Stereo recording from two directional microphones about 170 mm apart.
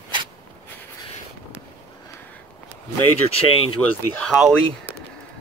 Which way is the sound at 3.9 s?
5° left (ahead or behind).